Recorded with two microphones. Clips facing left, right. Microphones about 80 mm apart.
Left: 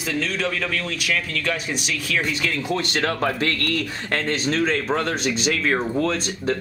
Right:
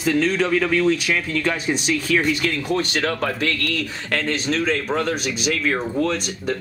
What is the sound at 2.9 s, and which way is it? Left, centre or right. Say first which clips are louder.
A man's voice: even; left.